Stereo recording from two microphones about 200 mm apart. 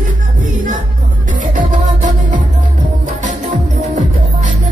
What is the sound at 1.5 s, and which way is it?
Music, 40° right (ahead or behind).